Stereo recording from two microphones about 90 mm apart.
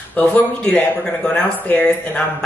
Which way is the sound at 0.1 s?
15° left (ahead or behind).